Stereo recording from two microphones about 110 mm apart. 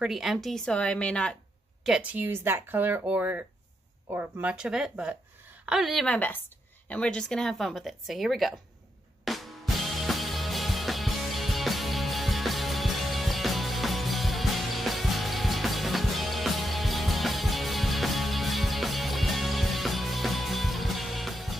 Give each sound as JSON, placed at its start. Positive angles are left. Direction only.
{"t": 0.0, "sound": "speech", "side_deg": -5}
{"t": 1.9, "sound": "speech", "side_deg": -10}
{"t": 6.1, "sound": "a woman's voice", "side_deg": 15}
{"t": 9.2, "sound": "music", "side_deg": 0}